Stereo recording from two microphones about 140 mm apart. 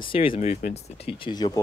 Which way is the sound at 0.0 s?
40° left (ahead or behind).